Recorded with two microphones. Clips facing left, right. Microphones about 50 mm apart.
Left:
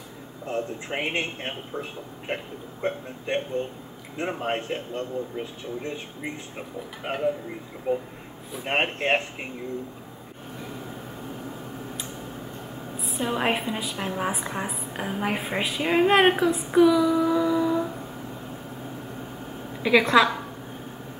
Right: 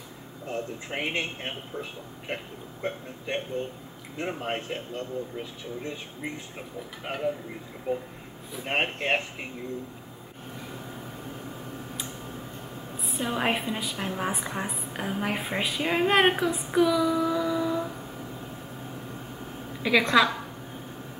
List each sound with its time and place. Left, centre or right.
0.5 s a man's voice: centre
4.2 s a man's voice: centre
7.9 s speech: left
8.5 s a man's voice: centre
13.0 s a woman's voice: centre
19.8 s a man's voice: centre